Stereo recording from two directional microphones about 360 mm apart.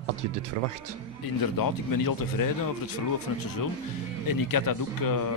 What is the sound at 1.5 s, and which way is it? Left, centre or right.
Speech, left.